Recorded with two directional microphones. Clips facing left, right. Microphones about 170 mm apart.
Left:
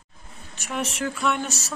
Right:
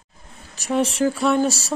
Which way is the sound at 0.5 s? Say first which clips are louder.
Right 8 dB; 35° right (ahead or behind).